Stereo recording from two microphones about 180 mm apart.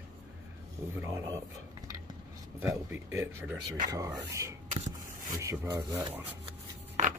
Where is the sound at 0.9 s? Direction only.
15° right (ahead or behind).